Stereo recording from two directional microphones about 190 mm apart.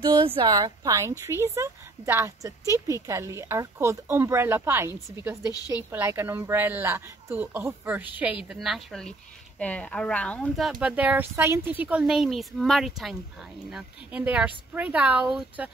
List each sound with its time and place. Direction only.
0.4 s a woman's voice: 20° right (ahead or behind)
5.5 s a woman's voice: 20° left (ahead or behind)
5.9 s a woman's voice: 10° right (ahead or behind)